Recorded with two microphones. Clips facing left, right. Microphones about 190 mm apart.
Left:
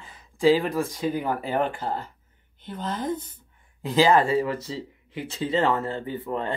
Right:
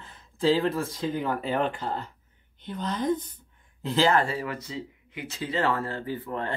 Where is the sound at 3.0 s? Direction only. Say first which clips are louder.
Right 2 dB; 5° left (ahead or behind).